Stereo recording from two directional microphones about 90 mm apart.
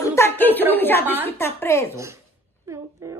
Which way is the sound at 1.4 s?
30° left (ahead or behind).